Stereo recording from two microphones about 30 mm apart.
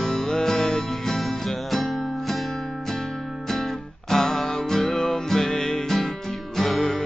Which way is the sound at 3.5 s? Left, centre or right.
Centre.